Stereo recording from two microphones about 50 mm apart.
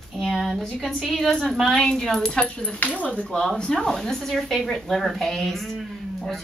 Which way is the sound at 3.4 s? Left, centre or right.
Centre.